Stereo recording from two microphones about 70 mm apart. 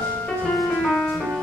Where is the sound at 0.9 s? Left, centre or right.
Centre.